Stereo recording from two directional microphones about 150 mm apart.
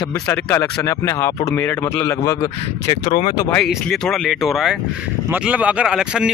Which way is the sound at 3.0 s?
60° left (ahead or behind).